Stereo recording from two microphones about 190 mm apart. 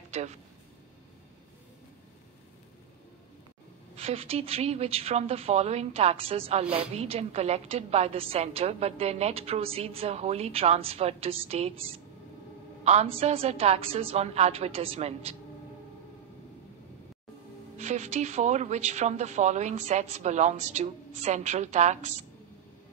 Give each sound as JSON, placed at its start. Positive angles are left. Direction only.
{"t": 0.1, "sound": "speech", "side_deg": -35}
{"t": 3.9, "sound": "a woman's voice", "side_deg": -30}
{"t": 17.7, "sound": "a woman's voice", "side_deg": -35}